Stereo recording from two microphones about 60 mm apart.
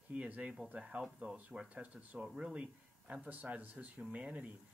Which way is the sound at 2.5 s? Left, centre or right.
Centre.